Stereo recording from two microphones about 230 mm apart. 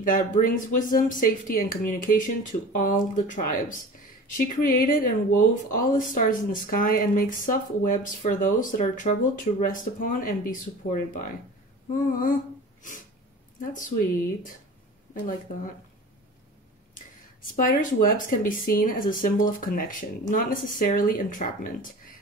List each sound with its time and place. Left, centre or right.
0.0 s speech: left
13.6 s speech: left
15.1 s speech: left
17.4 s speech: left